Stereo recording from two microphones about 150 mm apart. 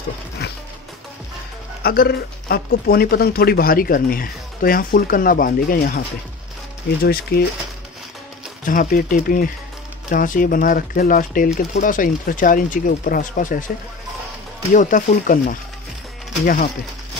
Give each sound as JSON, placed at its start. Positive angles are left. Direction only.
{"t": 1.8, "sound": "speech", "side_deg": 90}
{"t": 7.0, "sound": "speech", "side_deg": 85}
{"t": 8.6, "sound": "speech", "side_deg": 65}
{"t": 14.7, "sound": "speech", "side_deg": 60}